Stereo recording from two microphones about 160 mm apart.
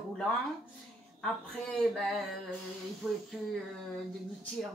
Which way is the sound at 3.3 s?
5° right (ahead or behind).